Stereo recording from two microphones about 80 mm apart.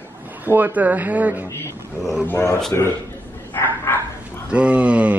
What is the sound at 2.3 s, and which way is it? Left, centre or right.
Speech, left.